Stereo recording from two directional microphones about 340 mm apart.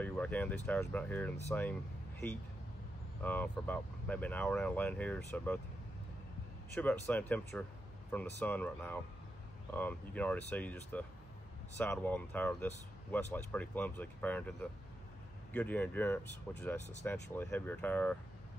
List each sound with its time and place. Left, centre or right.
0.0 s speech: centre
3.2 s speech: centre
6.7 s speech: centre